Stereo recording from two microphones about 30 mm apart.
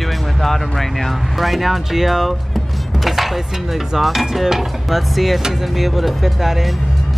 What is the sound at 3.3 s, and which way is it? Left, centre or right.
Speech, centre.